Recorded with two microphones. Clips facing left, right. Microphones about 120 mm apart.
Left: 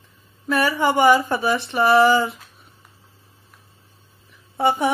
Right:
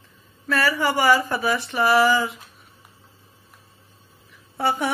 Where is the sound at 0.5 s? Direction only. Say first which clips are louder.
Left 2 dB; 20° left (ahead or behind).